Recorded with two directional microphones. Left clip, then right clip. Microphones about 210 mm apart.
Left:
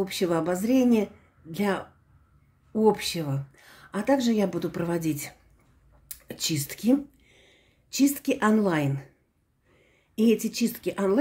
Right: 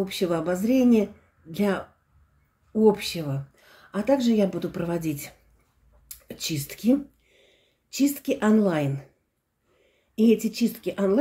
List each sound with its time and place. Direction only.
0.0 s speech: 20° left (ahead or behind)
10.1 s speech: 20° left (ahead or behind)